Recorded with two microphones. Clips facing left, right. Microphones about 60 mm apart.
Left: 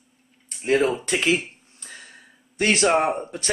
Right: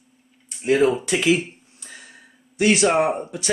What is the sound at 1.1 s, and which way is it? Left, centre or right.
Speech, left.